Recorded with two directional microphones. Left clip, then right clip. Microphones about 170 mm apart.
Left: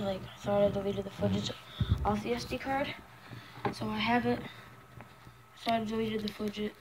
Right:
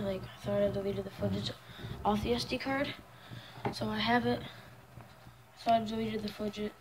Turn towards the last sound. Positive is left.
turn(degrees=-5)  # may be behind; listen again after turning